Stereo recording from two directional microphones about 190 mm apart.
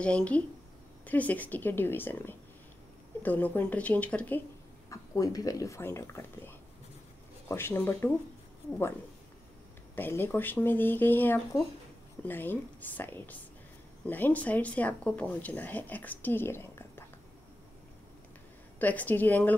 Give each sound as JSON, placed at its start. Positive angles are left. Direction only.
{"t": 0.0, "sound": "speech", "side_deg": 5}
{"t": 4.8, "sound": "speech", "side_deg": 15}
{"t": 9.9, "sound": "speech", "side_deg": 10}
{"t": 18.8, "sound": "speech", "side_deg": 10}